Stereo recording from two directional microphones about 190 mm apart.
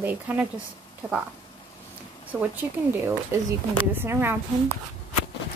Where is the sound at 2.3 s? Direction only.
10° right (ahead or behind).